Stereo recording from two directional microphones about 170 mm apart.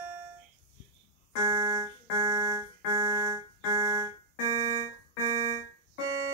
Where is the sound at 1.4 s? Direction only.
20° right (ahead or behind).